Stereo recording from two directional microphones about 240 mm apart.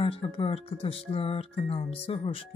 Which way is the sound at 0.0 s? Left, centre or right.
Left.